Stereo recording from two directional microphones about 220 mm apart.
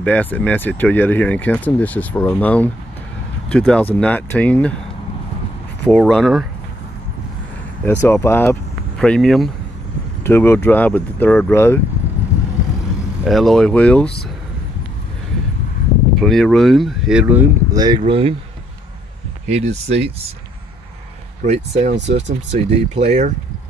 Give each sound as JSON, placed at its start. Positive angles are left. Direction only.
{"t": 0.0, "sound": "speech", "side_deg": 5}
{"t": 5.9, "sound": "speech", "side_deg": 0}
{"t": 7.8, "sound": "speech", "side_deg": 10}
{"t": 13.2, "sound": "speech", "side_deg": 0}
{"t": 16.2, "sound": "speech", "side_deg": 0}
{"t": 19.4, "sound": "speech", "side_deg": -30}
{"t": 21.5, "sound": "speech", "side_deg": -30}